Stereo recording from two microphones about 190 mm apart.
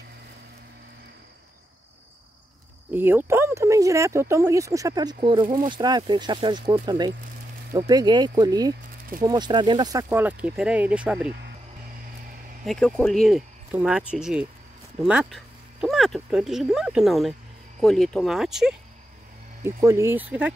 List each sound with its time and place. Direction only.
2.9 s speech: 10° right (ahead or behind)
12.6 s speech: 5° left (ahead or behind)
19.6 s speech: 15° right (ahead or behind)